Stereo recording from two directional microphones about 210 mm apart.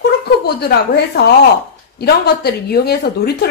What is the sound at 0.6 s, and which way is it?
Speech, 50° left (ahead or behind).